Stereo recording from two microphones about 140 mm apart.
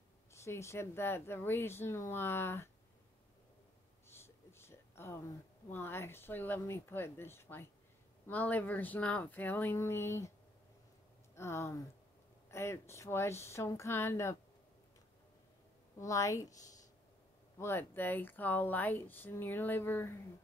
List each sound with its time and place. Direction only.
0.3 s speech: 20° left (ahead or behind)
4.1 s a sound: 20° left (ahead or behind)
5.7 s speech: 15° left (ahead or behind)
11.3 s speech: 20° left (ahead or behind)
16.0 s speech: 20° left (ahead or behind)
17.6 s speech: 15° left (ahead or behind)